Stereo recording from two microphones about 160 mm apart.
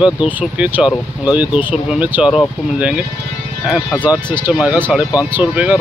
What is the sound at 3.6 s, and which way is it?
Speech, centre (ahead or behind).